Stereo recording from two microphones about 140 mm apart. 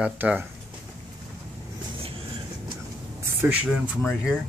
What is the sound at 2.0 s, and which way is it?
Vehicle, 40° right (ahead or behind).